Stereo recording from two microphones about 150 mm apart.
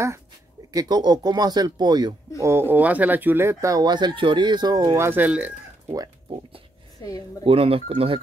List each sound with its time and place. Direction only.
0.7 s speech: 25° right (ahead or behind)
2.4 s speech: 15° right (ahead or behind)
7.0 s a woman's voice: 25° left (ahead or behind)
7.4 s speech: 40° right (ahead or behind)